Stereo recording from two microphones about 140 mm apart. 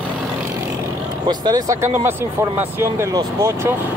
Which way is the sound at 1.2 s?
30° right (ahead or behind).